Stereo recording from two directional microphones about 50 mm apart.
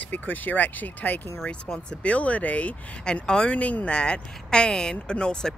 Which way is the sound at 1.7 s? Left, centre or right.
Left.